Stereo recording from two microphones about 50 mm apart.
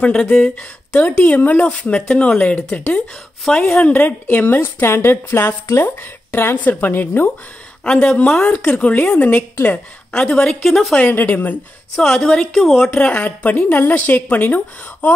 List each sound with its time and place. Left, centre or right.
0.0 s speech: left
3.4 s a woman's voice: centre
3.7 s a woman's voice: left
4.8 s speech: left
7.8 s a woman's voice: left
10.3 s a woman's voice: centre
11.0 s a woman's voice: left
12.0 s a woman's voice: centre
12.9 s a woman's voice: left